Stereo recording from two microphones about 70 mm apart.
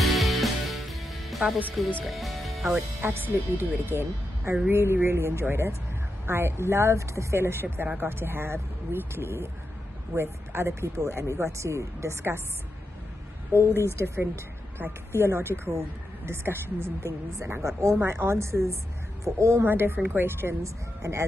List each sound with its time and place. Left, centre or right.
0.0 s music: centre
2.7 s speech: right
13.5 s speech: right
19.6 s speech: right
20.6 s speech: right